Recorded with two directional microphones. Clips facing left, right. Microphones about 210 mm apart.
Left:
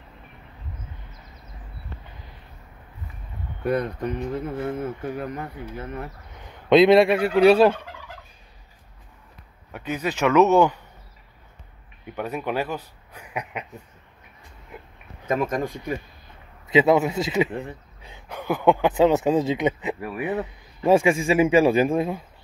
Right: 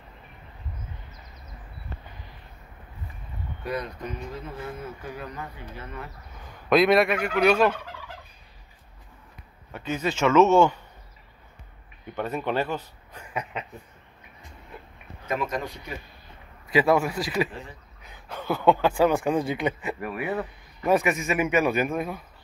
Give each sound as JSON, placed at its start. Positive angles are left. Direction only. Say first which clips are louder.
{"t": 3.6, "sound": "speech", "louder": "left 8 dB", "side_deg": 55}
{"t": 6.3, "sound": "fowl", "louder": "left 5 dB", "side_deg": 20}
{"t": 9.7, "sound": "speech", "louder": "left 1 dB", "side_deg": 15}
{"t": 12.2, "sound": "speech", "louder": "even", "side_deg": 10}
{"t": 14.7, "sound": "a sound", "louder": "left 2 dB", "side_deg": 15}
{"t": 15.2, "sound": "speech", "louder": "left 5 dB", "side_deg": 45}
{"t": 16.6, "sound": "a man's voice", "louder": "left 3 dB", "side_deg": 20}
{"t": 17.5, "sound": "speech", "louder": "left 8 dB", "side_deg": 60}
{"t": 18.3, "sound": "a man's voice", "louder": "left 2 dB", "side_deg": 15}